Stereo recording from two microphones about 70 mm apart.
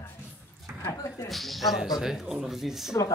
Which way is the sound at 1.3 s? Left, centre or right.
Centre.